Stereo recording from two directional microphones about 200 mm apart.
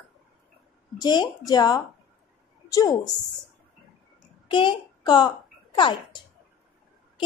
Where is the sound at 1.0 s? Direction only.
20° left (ahead or behind).